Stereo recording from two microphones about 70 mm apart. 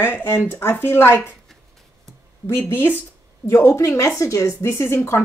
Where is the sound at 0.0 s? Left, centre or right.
Left.